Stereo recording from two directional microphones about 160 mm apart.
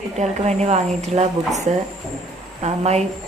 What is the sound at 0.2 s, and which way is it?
Speech, 45° right (ahead or behind).